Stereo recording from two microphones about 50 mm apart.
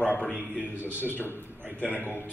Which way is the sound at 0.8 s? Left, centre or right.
Left.